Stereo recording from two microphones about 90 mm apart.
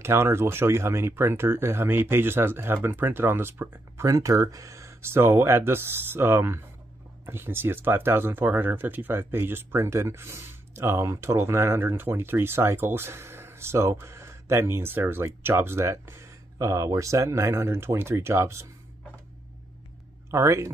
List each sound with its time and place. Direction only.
0.0 s speech: 30° right (ahead or behind)
4.0 s speech: 40° right (ahead or behind)
20.2 s speech: 30° right (ahead or behind)